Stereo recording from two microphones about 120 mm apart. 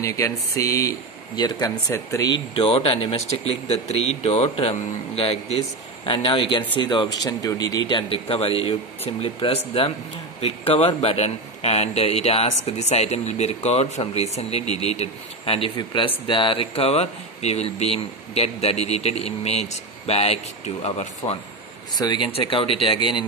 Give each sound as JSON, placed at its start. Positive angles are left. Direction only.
{"t": 0.0, "sound": "speech", "side_deg": 25}
{"t": 1.3, "sound": "speech", "side_deg": 35}
{"t": 1.9, "sound": "speech", "side_deg": 25}
{"t": 2.5, "sound": "speech", "side_deg": 50}
{"t": 6.0, "sound": "speech", "side_deg": 45}
{"t": 21.9, "sound": "speech", "side_deg": 35}